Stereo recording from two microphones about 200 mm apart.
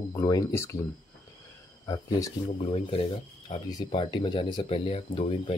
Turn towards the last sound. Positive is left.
turn(degrees=25)  # may be behind; listen again after turning